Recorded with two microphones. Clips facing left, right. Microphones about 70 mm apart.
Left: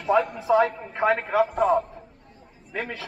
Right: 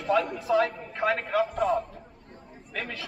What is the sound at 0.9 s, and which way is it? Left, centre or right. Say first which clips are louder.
Speech: left 4 dB; centre.